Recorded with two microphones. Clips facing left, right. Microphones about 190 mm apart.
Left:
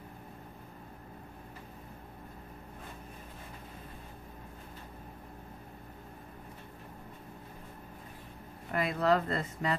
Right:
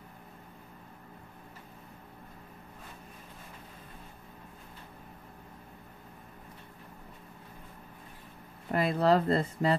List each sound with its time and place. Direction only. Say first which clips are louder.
8.7 s speech: right 3 dB; 30° right (ahead or behind)